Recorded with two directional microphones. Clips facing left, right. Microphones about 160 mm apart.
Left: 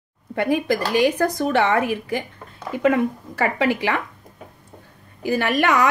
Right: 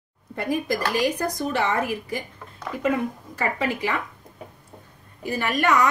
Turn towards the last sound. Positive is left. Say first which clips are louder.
# left 3 dB
turn(degrees=75)  # may be behind; listen again after turning